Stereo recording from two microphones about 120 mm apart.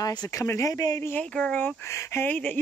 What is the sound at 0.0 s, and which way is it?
Speech, 35° left (ahead or behind).